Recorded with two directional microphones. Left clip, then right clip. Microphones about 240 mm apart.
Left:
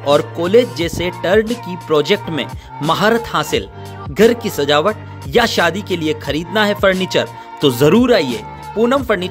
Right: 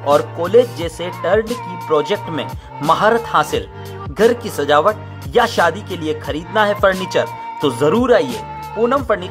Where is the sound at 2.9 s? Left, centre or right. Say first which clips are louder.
Right 1 dB; left.